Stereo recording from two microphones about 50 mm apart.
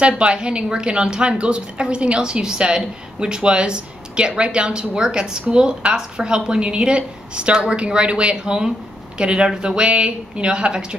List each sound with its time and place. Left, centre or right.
0.0 s a woman's voice: centre